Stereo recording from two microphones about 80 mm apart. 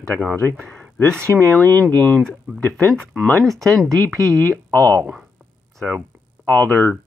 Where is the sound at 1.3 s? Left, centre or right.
Left.